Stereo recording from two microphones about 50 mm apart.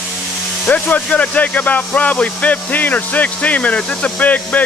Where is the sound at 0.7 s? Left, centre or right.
Left.